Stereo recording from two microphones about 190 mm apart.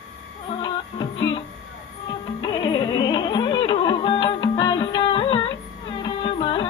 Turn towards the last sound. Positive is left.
turn(degrees=25)  # may be behind; listen again after turning